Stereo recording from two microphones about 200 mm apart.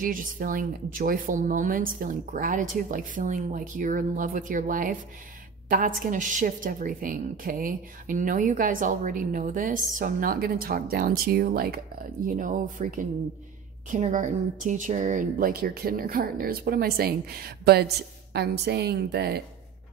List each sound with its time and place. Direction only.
0.0 s a woman's voice: 45° right (ahead or behind)